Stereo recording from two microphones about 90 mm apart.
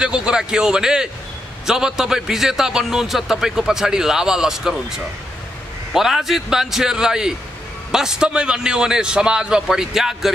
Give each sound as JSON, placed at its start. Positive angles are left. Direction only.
{"t": 0.0, "sound": "a man's voice", "side_deg": -10}